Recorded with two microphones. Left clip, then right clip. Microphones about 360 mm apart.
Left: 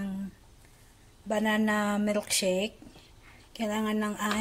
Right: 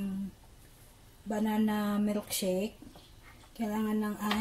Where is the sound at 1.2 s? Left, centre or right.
Left.